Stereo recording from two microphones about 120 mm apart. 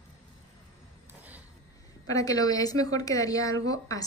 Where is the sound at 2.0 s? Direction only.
30° left (ahead or behind).